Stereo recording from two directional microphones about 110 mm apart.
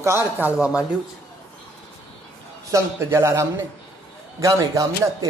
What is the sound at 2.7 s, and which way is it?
A man's voice, 25° right (ahead or behind).